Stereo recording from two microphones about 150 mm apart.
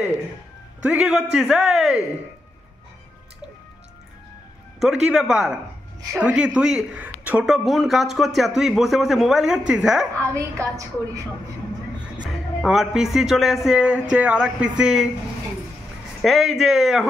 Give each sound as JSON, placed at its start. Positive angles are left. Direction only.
{"t": 0.8, "sound": "a man's voice", "side_deg": -5}
{"t": 5.0, "sound": "a man's voice", "side_deg": -5}
{"t": 10.3, "sound": "a woman's voice", "side_deg": -20}
{"t": 12.2, "sound": "a man's voice", "side_deg": -5}
{"t": 16.2, "sound": "a man's voice", "side_deg": 0}